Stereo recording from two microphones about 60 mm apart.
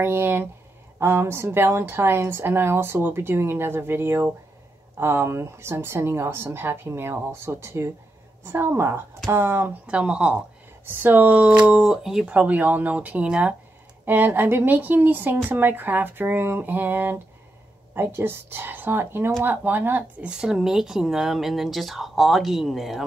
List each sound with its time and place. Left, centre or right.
0.0 s a woman's voice: right
9.8 s speech: centre
10.9 s speech: right; by 12.3 s centre
12.3 s speech: right
14.0 s a woman's voice: right
20.2 s speech: centre